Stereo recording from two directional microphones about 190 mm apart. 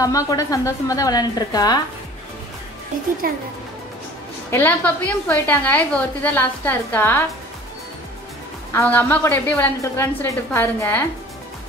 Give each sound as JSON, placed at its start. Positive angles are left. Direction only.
{"t": 0.0, "sound": "a woman's voice", "side_deg": 20}
{"t": 3.2, "sound": "speech", "side_deg": -50}
{"t": 4.5, "sound": "a woman's voice", "side_deg": 10}
{"t": 8.7, "sound": "a woman's voice", "side_deg": 10}